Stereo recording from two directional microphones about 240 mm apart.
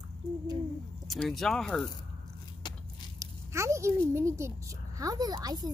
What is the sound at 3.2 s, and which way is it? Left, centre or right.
Speech, centre.